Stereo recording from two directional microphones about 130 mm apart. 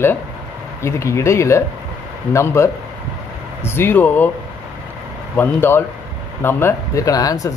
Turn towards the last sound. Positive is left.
turn(degrees=25)  # may be behind; listen again after turning